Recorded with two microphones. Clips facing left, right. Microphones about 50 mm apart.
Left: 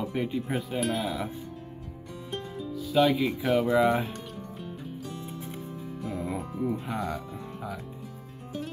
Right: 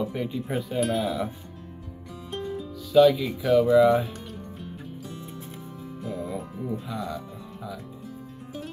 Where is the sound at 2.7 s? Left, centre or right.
Centre.